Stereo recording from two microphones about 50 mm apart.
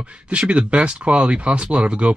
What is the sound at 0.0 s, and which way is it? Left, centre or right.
Speech, right.